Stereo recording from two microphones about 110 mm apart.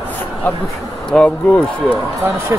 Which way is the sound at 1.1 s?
5° left (ahead or behind).